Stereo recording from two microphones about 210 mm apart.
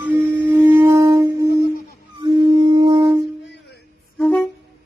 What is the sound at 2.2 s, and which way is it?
Music, 20° right (ahead or behind).